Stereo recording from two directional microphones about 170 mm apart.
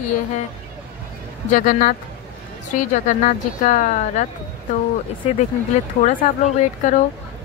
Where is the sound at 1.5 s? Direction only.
55° left (ahead or behind).